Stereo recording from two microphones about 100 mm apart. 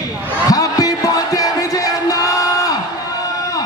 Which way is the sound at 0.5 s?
35° left (ahead or behind).